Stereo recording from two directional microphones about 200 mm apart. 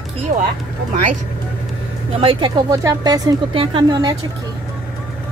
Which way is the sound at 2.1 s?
25° right (ahead or behind).